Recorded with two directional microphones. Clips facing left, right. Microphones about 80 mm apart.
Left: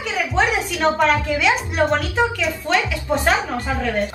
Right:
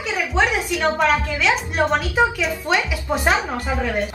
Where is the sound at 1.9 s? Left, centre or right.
Centre.